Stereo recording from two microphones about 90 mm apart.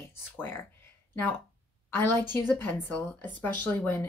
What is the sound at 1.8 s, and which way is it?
A woman's voice, 25° left (ahead or behind).